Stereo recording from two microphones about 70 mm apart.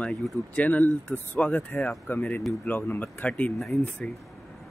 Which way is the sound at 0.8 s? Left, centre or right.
Left.